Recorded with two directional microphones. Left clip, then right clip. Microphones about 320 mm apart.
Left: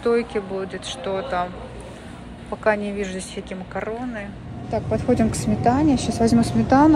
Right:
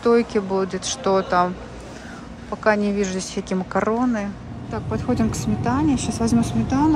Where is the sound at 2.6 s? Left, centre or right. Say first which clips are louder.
Right 2 dB; centre.